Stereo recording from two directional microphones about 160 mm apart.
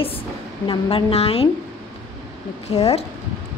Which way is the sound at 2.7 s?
40° left (ahead or behind).